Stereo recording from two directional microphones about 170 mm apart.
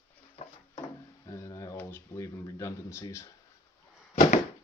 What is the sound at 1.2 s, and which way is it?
Speech, 15° left (ahead or behind).